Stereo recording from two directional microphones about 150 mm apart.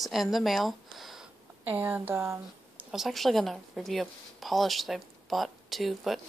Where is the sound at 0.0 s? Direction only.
Centre (ahead or behind).